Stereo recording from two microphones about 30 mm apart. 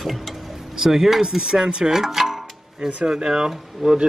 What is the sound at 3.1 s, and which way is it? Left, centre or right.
Speech, right.